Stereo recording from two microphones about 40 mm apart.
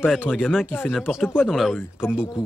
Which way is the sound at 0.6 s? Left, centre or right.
Left.